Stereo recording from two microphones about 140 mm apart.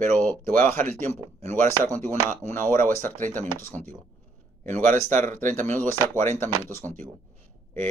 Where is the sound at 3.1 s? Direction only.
70° right (ahead or behind).